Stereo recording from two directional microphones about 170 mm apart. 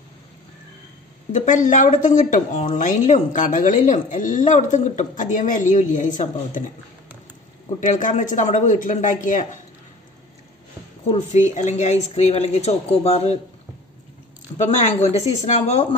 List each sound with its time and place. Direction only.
1.3 s a woman's voice: 45° left (ahead or behind)
7.8 s a woman's voice: 50° left (ahead or behind)
11.3 s speech: 45° left (ahead or behind)
14.6 s speech: 40° left (ahead or behind)